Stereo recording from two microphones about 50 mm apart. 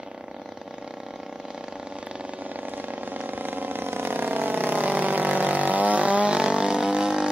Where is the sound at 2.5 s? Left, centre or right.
Right.